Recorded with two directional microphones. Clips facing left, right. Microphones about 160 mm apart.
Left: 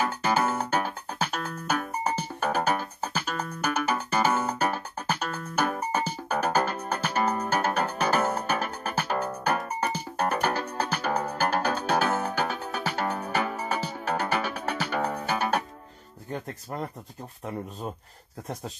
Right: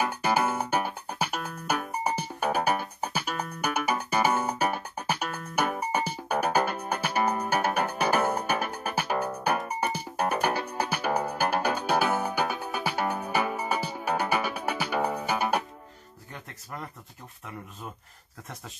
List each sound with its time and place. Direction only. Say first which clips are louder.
0.0 s music: even; 10° right (ahead or behind)
16.3 s music: left 8 dB; 35° left (ahead or behind)